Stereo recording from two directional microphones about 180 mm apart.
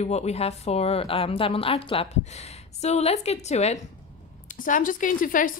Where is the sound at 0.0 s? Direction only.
35° left (ahead or behind).